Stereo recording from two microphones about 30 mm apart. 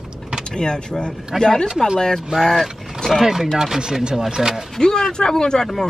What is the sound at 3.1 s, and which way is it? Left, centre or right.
Speech, centre.